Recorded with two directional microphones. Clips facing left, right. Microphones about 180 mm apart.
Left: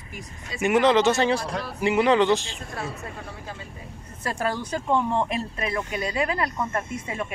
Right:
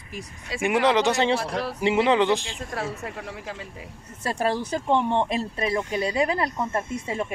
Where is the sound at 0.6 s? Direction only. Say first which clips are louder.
Left 2 dB; 15° right (ahead or behind).